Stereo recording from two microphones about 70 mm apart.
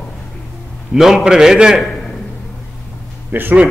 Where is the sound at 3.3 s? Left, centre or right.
Right.